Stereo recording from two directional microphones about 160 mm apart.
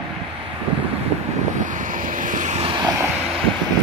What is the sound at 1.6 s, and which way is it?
Vehicle, 55° right (ahead or behind).